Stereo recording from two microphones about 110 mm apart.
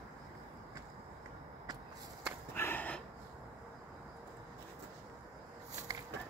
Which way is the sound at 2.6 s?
15° left (ahead or behind).